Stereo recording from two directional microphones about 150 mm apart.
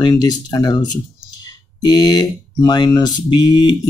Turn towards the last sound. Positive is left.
turn(degrees=25)  # may be behind; listen again after turning